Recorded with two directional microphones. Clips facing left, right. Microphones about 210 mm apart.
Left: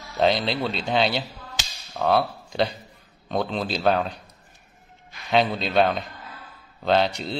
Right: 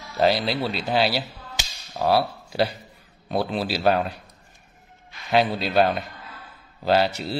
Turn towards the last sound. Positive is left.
turn(degrees=-5)  # may be behind; listen again after turning